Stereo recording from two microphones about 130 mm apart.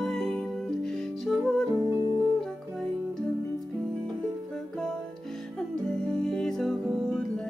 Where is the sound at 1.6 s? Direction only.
25° right (ahead or behind).